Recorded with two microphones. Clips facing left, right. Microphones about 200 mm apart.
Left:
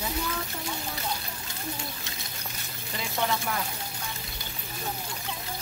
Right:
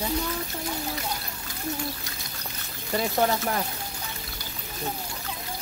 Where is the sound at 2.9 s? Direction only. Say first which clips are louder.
Right 6 dB; 45° right (ahead or behind).